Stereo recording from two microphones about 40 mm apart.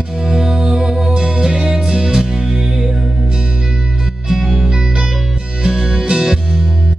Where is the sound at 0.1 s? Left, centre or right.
Centre.